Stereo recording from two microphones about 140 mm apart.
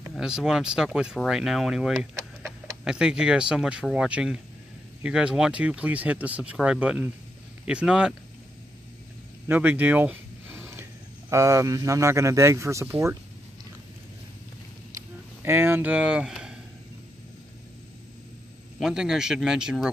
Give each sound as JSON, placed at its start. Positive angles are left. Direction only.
{"t": 0.1, "sound": "speech", "side_deg": -5}
{"t": 9.5, "sound": "speech", "side_deg": -10}
{"t": 15.0, "sound": "a sound", "side_deg": -15}
{"t": 18.8, "sound": "speech", "side_deg": -5}